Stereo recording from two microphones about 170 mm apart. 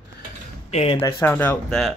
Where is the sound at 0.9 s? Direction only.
10° left (ahead or behind).